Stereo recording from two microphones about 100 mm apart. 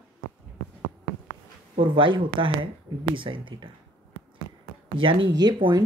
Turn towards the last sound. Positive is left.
turn(degrees=-50)  # may be behind; listen again after turning